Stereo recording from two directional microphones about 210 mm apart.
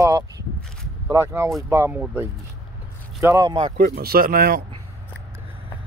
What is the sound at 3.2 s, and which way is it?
Speech, 15° right (ahead or behind).